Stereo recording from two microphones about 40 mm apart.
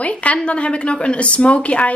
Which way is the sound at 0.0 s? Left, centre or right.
Left.